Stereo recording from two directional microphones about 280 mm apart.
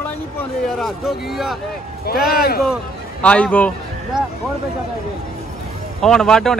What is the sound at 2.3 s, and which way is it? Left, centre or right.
Speech, left.